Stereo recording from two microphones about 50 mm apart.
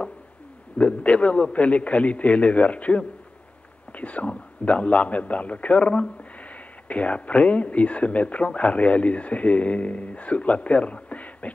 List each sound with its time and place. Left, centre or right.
0.7 s a man's voice: left